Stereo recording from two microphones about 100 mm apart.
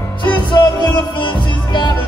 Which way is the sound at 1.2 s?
55° left (ahead or behind).